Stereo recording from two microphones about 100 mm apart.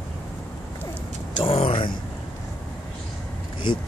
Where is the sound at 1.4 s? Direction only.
65° left (ahead or behind).